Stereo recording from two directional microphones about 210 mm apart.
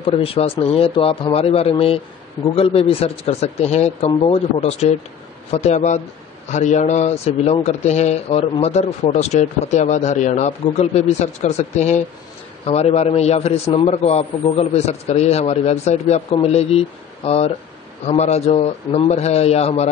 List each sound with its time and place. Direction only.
0.0 s speech: 25° left (ahead or behind)